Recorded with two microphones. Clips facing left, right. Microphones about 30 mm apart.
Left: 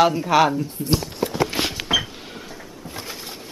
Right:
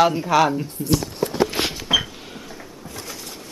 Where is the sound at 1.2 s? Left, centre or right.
Centre.